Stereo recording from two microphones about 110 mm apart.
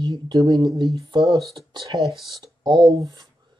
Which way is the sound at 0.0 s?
35° right (ahead or behind).